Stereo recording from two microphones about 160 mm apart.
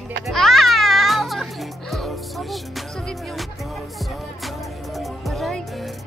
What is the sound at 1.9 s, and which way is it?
Music, centre (ahead or behind).